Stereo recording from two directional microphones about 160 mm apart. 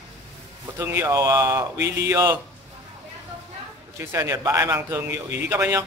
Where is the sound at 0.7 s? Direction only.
15° right (ahead or behind).